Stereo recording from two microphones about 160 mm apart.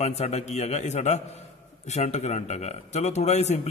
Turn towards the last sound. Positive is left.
turn(degrees=45)  # may be behind; listen again after turning